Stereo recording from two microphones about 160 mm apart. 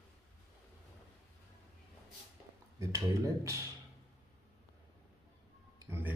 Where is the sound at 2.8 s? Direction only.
20° right (ahead or behind).